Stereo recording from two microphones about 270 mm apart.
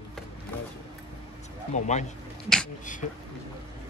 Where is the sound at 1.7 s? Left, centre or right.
Left.